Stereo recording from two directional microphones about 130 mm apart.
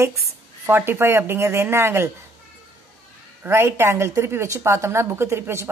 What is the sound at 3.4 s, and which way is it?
A woman's voice, 20° right (ahead or behind).